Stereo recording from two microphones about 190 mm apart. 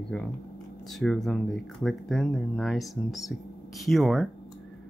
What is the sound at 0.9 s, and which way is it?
Speech, centre (ahead or behind).